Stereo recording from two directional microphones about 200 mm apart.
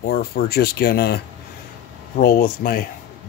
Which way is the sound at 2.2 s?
45° left (ahead or behind).